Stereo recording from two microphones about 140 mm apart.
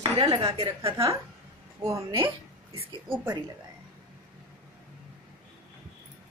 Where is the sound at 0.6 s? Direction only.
40° right (ahead or behind).